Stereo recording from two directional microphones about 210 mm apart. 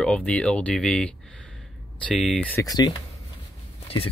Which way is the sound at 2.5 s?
15° left (ahead or behind).